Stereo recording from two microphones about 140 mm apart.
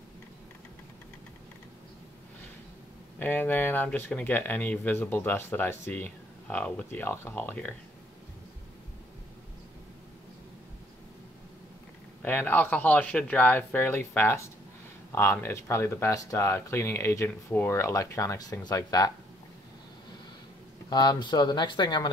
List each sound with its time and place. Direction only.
3.2 s speech: 10° left (ahead or behind)
12.2 s speech: 15° left (ahead or behind)
20.9 s speech: 30° left (ahead or behind)